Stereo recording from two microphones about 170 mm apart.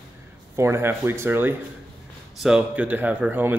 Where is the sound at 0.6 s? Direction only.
15° right (ahead or behind).